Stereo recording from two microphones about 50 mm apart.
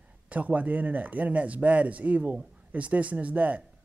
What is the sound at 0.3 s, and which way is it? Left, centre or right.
Speech, right.